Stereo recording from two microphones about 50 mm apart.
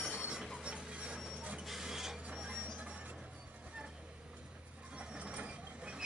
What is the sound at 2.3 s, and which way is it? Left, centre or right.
Vehicle, centre.